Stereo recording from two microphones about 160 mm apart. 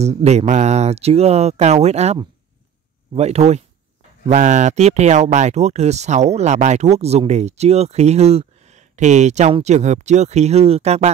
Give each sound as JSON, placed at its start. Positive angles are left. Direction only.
{"t": 0.0, "sound": "speech", "side_deg": -45}
{"t": 3.2, "sound": "speech", "side_deg": -45}